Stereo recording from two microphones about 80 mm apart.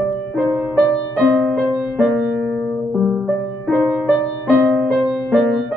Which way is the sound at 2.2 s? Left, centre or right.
Centre.